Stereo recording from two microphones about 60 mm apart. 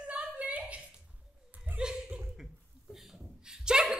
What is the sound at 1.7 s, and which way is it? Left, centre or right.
Chuckle, centre.